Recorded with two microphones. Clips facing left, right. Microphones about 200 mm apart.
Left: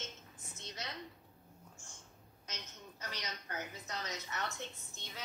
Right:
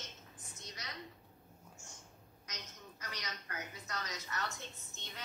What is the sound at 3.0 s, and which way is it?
A woman's voice, 30° left (ahead or behind).